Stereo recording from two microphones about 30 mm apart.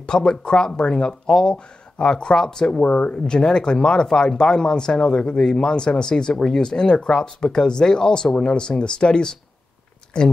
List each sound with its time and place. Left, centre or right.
0.0 s speech: left
2.8 s speech: left
3.1 s speech: left
6.3 s speech: centre
6.6 s speech: left